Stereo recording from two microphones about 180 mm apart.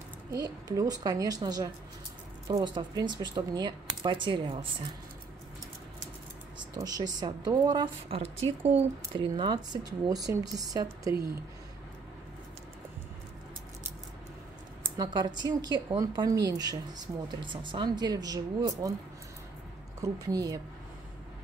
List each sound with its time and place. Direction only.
0.3 s speech: 20° right (ahead or behind)
6.7 s speech: 20° right (ahead or behind)
15.0 s speech: 25° right (ahead or behind)
20.0 s speech: 20° right (ahead or behind)